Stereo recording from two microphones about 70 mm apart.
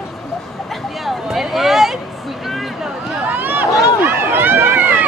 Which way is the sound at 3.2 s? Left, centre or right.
Right.